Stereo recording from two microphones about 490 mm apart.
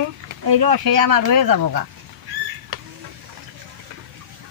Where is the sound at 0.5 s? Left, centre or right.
Right.